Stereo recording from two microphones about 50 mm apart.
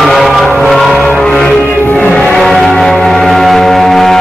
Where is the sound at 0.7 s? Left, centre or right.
Centre.